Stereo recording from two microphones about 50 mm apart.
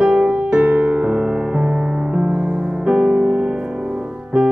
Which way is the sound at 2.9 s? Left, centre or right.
Centre.